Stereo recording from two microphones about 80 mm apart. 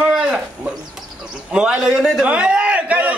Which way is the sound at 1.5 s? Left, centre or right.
Centre.